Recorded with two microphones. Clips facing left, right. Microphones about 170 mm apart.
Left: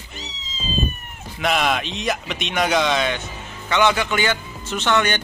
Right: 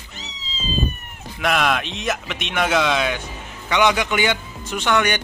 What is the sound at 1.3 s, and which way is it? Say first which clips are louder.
Speech: even; centre (ahead or behind).